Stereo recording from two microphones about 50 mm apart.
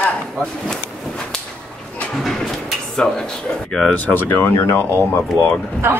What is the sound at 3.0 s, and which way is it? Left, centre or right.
Speech, centre.